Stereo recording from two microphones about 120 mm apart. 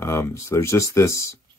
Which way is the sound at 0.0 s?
20° left (ahead or behind).